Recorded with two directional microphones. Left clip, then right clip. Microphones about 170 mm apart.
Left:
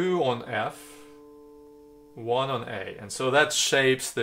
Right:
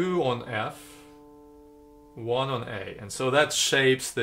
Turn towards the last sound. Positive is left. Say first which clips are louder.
# even
turn(degrees=30)  # may be behind; listen again after turning